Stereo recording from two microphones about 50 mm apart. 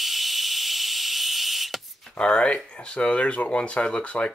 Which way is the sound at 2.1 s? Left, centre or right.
Centre.